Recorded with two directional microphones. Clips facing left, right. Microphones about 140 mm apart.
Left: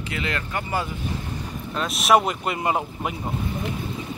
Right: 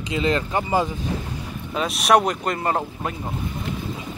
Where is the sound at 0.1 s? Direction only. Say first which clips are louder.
Right 7 dB; 20° right (ahead or behind).